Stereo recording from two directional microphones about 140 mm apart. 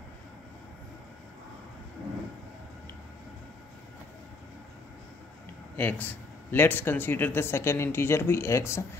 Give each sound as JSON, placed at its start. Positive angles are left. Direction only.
{"t": 5.8, "sound": "speech", "side_deg": 15}